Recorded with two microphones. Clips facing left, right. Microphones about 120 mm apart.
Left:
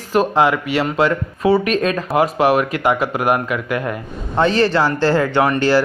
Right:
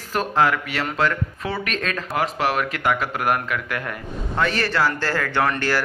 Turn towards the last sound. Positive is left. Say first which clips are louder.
# left 7 dB
turn(degrees=20)  # may be behind; listen again after turning